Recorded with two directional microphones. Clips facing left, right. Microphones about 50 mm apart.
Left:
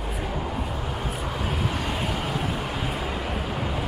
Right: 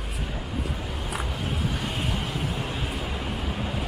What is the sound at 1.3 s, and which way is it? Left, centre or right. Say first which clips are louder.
Vehicle: left 2 dB; left.